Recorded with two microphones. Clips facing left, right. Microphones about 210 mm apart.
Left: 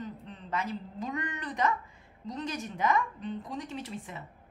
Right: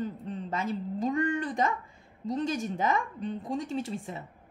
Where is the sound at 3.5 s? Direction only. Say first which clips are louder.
Right 6 dB; 45° right (ahead or behind).